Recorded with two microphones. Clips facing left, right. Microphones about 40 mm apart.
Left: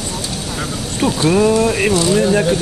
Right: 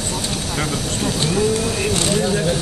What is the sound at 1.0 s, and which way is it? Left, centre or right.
Speech, left.